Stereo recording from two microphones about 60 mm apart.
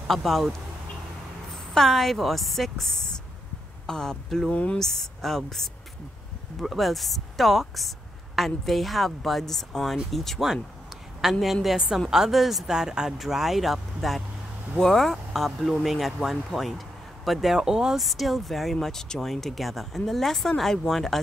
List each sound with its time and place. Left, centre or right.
0.1 s speech: centre
4.5 s speech: centre
4.7 s speech: centre